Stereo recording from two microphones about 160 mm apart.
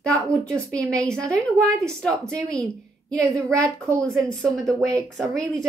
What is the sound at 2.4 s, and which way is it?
Speech, 5° left (ahead or behind).